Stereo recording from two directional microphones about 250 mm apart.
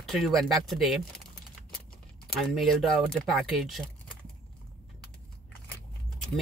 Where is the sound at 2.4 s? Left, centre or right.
Centre.